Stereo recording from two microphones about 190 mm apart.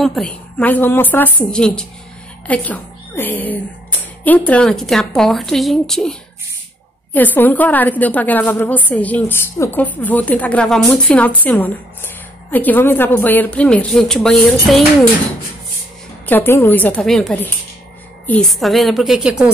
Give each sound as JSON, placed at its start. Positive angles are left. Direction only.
{"t": 0.0, "sound": "a woman's voice", "side_deg": 0}
{"t": 7.2, "sound": "a woman's voice", "side_deg": 10}
{"t": 16.3, "sound": "a woman's voice", "side_deg": 10}